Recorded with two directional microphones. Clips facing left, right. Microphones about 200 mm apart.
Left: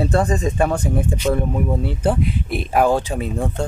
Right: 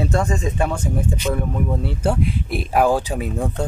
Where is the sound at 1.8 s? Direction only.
Centre (ahead or behind).